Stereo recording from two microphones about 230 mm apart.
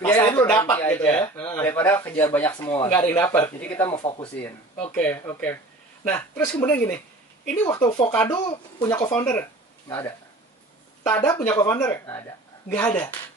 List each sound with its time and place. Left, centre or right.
0.0 s speech: centre
4.4 s speech: centre